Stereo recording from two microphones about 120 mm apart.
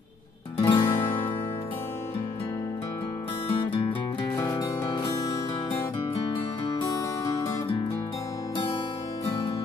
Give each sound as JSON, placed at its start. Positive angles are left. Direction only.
{"t": 0.6, "sound": "music", "side_deg": 50}
{"t": 3.4, "sound": "music", "side_deg": 55}
{"t": 4.4, "sound": "music", "side_deg": 30}